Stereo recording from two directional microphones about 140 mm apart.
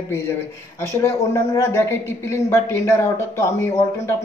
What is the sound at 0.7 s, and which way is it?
Speech, 15° left (ahead or behind).